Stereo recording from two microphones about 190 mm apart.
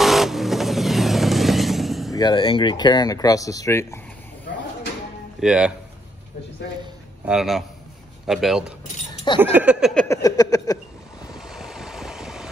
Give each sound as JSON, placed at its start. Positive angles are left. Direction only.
{"t": 0.0, "sound": "vehicle", "side_deg": 0}
{"t": 2.1, "sound": "speech", "side_deg": 25}
{"t": 5.4, "sound": "speech", "side_deg": -5}
{"t": 7.2, "sound": "speech", "side_deg": 0}
{"t": 9.4, "sound": "a sound", "side_deg": -10}
{"t": 10.0, "sound": "speech", "side_deg": 15}
{"t": 11.3, "sound": "vehicle", "side_deg": 0}